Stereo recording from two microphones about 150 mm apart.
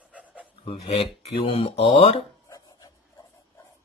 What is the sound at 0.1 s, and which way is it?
Pant, 10° right (ahead or behind).